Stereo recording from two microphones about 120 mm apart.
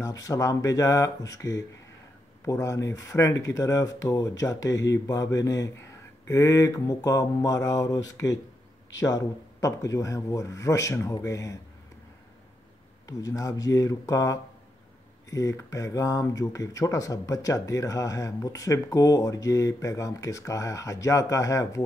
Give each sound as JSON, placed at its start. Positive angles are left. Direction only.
{"t": 0.0, "sound": "speech", "side_deg": 30}
{"t": 9.6, "sound": "speech", "side_deg": 30}
{"t": 13.0, "sound": "speech", "side_deg": 30}